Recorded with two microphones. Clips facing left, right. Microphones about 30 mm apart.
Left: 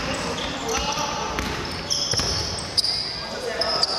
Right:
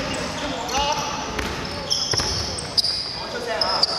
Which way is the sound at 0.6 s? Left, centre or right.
Centre.